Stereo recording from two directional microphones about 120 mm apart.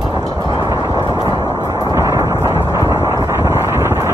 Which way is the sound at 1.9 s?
25° right (ahead or behind).